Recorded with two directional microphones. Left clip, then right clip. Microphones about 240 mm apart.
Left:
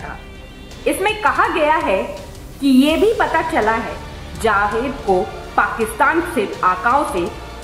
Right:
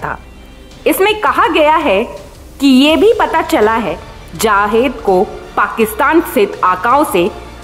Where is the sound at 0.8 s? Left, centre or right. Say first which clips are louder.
Right 5 dB; right.